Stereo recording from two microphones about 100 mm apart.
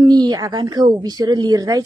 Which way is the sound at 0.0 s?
45° right (ahead or behind).